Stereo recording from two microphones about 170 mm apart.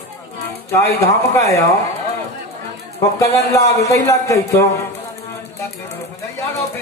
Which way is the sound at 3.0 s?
20° left (ahead or behind).